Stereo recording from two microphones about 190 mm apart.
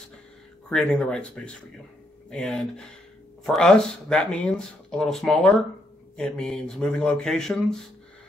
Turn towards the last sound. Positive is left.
turn(degrees=5)  # may be behind; listen again after turning